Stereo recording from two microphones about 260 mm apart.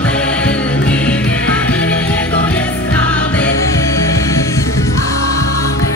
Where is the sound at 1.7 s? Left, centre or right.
Centre.